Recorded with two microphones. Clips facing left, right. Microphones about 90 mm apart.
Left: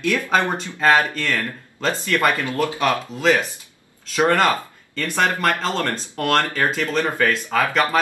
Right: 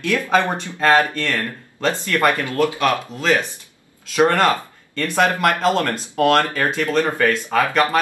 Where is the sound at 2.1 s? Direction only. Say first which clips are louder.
Right 1 dB; 20° left (ahead or behind).